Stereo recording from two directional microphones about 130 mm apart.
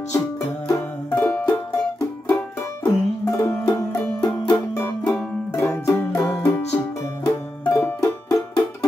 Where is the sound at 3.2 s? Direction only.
20° left (ahead or behind).